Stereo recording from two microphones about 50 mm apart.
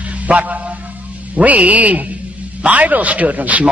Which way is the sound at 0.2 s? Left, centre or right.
Right.